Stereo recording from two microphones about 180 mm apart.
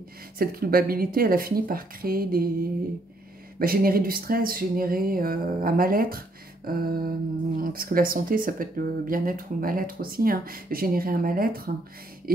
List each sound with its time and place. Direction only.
0.4 s speech: 55° right (ahead or behind)
3.5 s speech: 55° right (ahead or behind)